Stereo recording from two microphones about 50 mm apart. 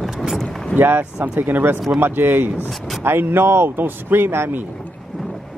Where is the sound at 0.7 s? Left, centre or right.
Right.